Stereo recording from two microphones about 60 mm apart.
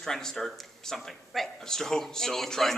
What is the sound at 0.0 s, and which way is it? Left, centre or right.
A woman's voice, centre.